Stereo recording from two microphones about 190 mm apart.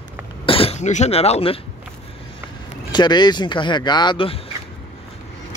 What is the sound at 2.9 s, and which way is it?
Speech, 25° left (ahead or behind).